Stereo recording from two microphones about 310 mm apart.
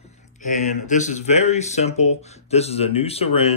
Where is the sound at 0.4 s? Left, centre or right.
Left.